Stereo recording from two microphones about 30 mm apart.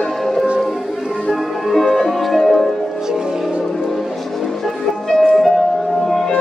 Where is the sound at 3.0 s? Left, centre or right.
Centre.